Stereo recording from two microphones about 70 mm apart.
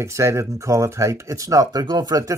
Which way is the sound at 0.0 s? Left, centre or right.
Right.